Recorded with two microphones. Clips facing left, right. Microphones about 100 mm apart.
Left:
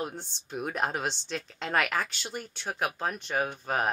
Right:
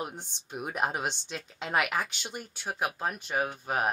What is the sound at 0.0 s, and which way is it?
A woman's voice, 15° right (ahead or behind).